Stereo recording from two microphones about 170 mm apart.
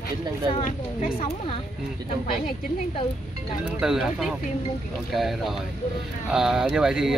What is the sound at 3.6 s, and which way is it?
Speech, 5° right (ahead or behind).